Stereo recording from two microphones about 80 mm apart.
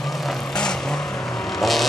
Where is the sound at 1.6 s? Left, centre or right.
Centre.